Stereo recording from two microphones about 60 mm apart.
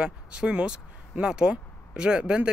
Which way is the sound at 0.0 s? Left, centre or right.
Centre.